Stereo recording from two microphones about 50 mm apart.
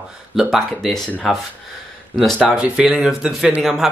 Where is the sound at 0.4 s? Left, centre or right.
Centre.